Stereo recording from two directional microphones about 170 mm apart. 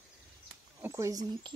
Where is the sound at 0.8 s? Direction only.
20° right (ahead or behind).